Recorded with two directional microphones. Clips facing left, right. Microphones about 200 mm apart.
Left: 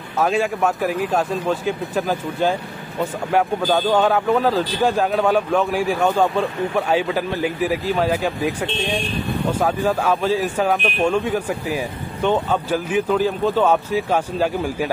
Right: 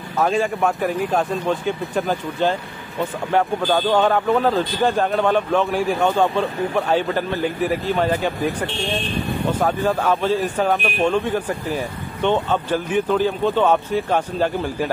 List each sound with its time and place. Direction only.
0.2 s speech: 5° left (ahead or behind)
8.6 s speech: 20° left (ahead or behind)
9.5 s speech: 5° left (ahead or behind)